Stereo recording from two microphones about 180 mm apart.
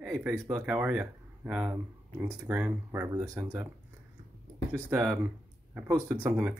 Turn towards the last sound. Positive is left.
turn(degrees=-5)  # may be behind; listen again after turning